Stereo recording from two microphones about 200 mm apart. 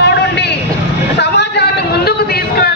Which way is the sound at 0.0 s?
55° left (ahead or behind).